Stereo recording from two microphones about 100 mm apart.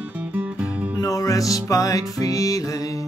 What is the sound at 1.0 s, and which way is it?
Music, 35° left (ahead or behind).